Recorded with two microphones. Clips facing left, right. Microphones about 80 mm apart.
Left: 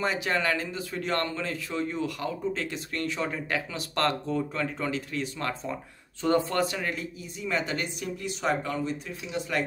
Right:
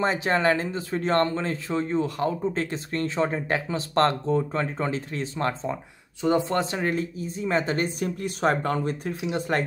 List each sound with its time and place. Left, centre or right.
0.0 s speech: right